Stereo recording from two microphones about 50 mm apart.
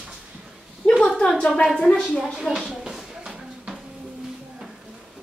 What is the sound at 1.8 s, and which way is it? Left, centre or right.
Speech, centre.